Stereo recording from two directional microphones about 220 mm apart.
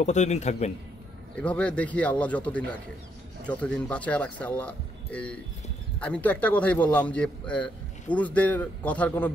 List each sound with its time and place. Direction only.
0.0 s a man's voice: 30° left (ahead or behind)
1.3 s a man's voice: 5° left (ahead or behind)